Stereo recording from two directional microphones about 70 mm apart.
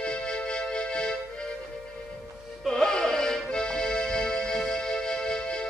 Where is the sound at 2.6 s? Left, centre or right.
Centre.